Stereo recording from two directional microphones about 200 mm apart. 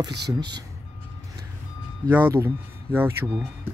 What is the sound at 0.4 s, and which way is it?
Speech, 20° right (ahead or behind).